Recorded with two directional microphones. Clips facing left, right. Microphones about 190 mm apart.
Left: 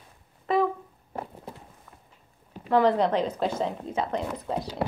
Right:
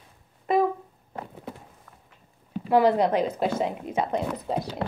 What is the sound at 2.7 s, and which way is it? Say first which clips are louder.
Speech: right 2 dB; 10° right (ahead or behind).